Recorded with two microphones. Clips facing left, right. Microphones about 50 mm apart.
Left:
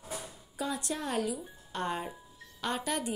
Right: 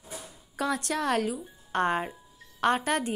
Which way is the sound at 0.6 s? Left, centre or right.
Right.